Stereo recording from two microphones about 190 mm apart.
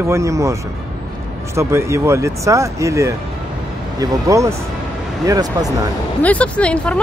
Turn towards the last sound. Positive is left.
turn(degrees=5)  # may be behind; listen again after turning